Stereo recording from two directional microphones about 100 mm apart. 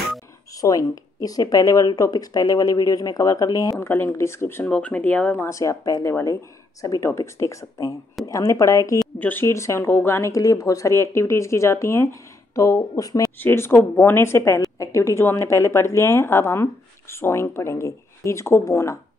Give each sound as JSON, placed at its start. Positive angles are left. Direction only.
{"t": 0.6, "sound": "speech", "side_deg": 35}
{"t": 3.8, "sound": "speech", "side_deg": 25}
{"t": 4.6, "sound": "speech", "side_deg": 10}
{"t": 5.4, "sound": "speech", "side_deg": 30}
{"t": 9.2, "sound": "speech", "side_deg": 20}
{"t": 13.4, "sound": "speech", "side_deg": 20}